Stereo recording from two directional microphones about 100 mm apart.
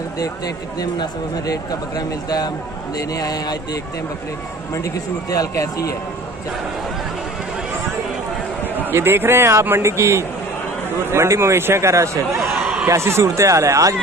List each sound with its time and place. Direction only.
5.3 s speech: 35° left (ahead or behind)
8.9 s a man's voice: 25° right (ahead or behind)